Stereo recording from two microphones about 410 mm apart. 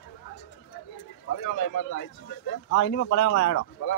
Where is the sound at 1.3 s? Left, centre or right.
Left.